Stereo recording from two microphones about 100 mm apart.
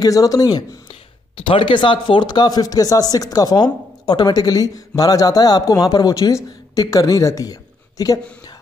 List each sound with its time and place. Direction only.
0.0 s speech: 35° left (ahead or behind)
1.3 s speech: 60° left (ahead or behind); by 7.5 s 35° left (ahead or behind)